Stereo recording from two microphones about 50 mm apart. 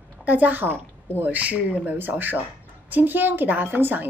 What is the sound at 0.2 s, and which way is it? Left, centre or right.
A woman's voice, right.